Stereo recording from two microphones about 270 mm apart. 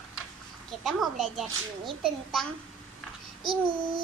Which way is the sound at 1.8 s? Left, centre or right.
Centre.